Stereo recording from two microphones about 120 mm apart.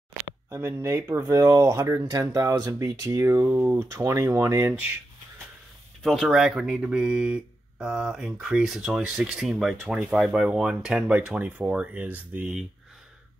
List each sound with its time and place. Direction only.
0.5 s speech: 20° right (ahead or behind)
6.0 s speech: 5° left (ahead or behind)